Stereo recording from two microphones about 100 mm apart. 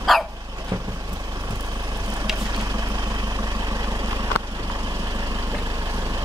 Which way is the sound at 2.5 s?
40° right (ahead or behind).